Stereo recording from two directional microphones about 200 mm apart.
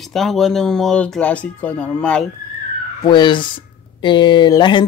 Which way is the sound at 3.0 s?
20° left (ahead or behind).